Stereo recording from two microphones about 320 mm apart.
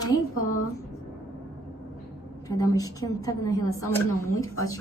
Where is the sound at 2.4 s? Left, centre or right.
Centre.